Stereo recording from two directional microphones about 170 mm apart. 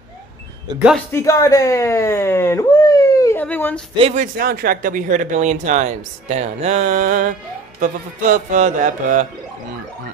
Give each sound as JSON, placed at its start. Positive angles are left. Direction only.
{"t": 1.1, "sound": "speech", "side_deg": 20}
{"t": 4.1, "sound": "speech", "side_deg": -55}